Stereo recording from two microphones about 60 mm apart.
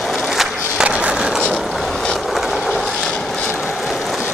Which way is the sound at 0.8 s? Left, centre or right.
Centre.